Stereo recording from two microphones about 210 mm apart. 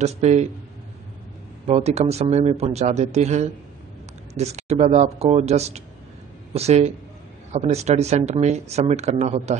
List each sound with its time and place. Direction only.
0.0 s speech: 35° right (ahead or behind)
1.7 s speech: 30° right (ahead or behind)